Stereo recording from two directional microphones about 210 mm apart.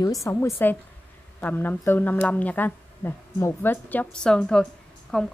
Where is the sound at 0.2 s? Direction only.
10° left (ahead or behind).